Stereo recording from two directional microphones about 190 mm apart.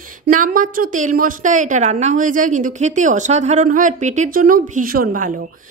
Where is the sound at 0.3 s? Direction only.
45° right (ahead or behind).